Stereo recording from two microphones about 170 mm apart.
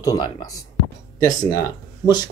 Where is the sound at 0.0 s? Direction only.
20° left (ahead or behind).